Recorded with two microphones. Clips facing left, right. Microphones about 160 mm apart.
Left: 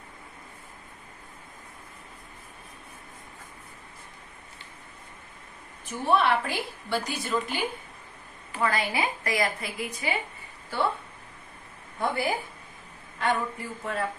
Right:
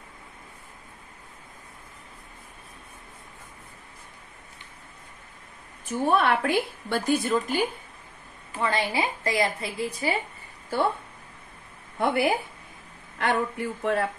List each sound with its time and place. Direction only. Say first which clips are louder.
5.9 s a woman's voice: right 1 dB; 50° right (ahead or behind)
8.6 s a woman's voice: right 1 dB; 25° right (ahead or behind)
12.0 s speech: right 4 dB; 70° right (ahead or behind)